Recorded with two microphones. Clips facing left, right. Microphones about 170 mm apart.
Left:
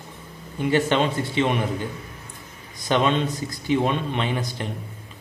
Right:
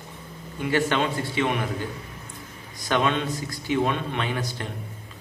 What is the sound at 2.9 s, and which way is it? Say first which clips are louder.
A man's voice: left 3 dB; 20° left (ahead or behind).